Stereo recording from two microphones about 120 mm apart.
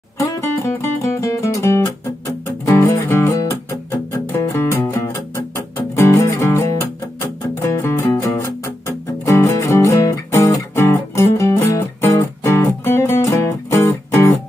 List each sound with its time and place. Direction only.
0.7 s music: 25° left (ahead or behind)